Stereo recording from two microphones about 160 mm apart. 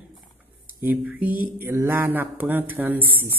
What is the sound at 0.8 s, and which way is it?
Mantra, 10° right (ahead or behind).